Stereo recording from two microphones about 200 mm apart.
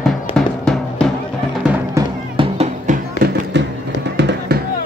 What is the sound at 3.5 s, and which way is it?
Music, 60° right (ahead or behind).